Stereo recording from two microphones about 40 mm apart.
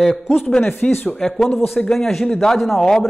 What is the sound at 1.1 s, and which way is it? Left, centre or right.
A man's voice, centre.